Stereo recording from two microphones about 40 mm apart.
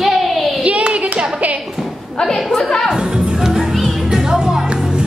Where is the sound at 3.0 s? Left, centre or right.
Centre.